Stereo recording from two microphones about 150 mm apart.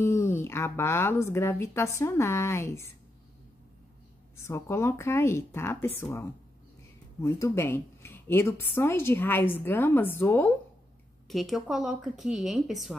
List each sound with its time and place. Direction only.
0.0 s a woman's voice: 15° left (ahead or behind)
4.5 s a woman's voice: 20° left (ahead or behind)
11.2 s speech: centre (ahead or behind)